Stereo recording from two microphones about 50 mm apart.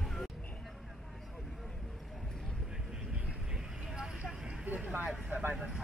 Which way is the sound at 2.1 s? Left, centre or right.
Centre.